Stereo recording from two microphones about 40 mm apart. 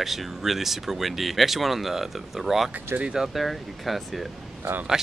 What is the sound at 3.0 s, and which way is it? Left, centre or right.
Speech, centre.